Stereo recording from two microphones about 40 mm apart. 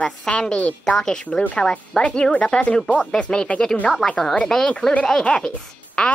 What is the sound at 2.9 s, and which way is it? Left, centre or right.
Speech, left.